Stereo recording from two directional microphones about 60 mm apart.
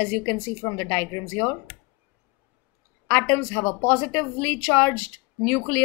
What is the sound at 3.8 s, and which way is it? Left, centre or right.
Speech, left.